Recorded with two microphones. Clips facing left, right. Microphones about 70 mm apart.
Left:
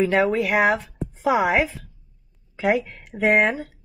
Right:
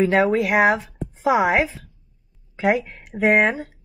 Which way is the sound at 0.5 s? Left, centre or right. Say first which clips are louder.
Right 2 dB; centre.